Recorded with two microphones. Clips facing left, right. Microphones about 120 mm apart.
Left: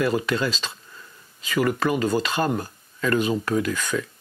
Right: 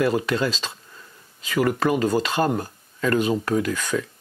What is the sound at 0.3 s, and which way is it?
Speech, 50° right (ahead or behind).